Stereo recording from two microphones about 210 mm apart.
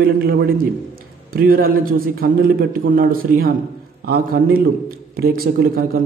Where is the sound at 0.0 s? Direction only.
45° right (ahead or behind).